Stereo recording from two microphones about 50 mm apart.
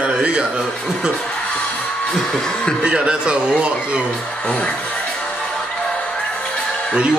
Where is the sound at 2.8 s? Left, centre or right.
Centre.